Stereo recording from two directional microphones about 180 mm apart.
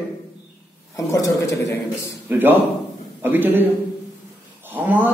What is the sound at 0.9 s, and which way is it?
Speech, 20° left (ahead or behind).